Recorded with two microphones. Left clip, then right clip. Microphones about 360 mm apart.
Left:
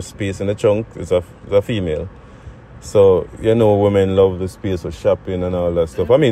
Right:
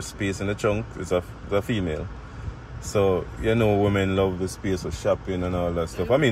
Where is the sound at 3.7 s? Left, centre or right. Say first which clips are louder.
Left 8 dB; left.